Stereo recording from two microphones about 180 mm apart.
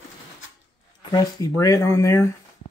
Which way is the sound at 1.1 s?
20° left (ahead or behind).